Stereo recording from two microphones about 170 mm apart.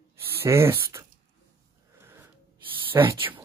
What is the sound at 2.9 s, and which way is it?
Speech, 20° right (ahead or behind).